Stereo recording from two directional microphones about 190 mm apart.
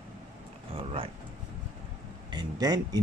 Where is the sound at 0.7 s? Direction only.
30° right (ahead or behind).